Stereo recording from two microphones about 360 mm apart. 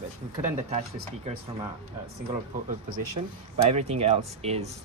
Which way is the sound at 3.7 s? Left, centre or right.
Centre.